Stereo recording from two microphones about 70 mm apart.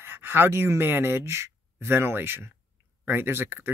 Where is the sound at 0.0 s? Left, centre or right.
Right.